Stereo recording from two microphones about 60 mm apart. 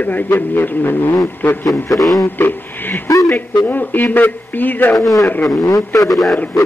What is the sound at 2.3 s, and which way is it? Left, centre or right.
Speech, left.